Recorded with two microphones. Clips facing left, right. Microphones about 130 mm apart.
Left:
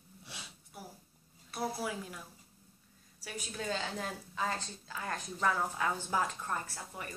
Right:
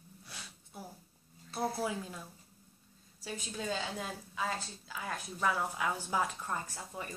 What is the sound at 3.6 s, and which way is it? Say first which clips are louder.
A woman's voice: left 1 dB; 10° right (ahead or behind).